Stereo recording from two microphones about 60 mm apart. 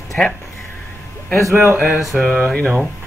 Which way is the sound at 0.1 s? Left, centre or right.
Centre.